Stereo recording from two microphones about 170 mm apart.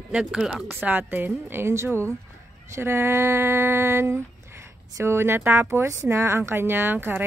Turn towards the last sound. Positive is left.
turn(degrees=-10)  # may be behind; listen again after turning